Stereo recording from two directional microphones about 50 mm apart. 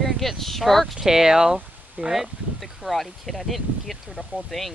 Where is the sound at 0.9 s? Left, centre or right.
Centre.